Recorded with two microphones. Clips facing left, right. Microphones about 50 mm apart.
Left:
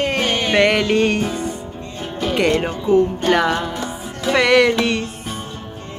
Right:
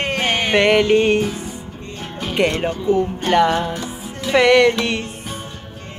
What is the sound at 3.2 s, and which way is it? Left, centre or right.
Music, centre.